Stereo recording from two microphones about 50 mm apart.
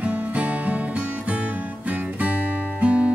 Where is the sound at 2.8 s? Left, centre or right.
Right.